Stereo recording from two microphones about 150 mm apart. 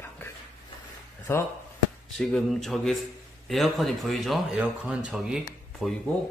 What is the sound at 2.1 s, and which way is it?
Speech, centre (ahead or behind).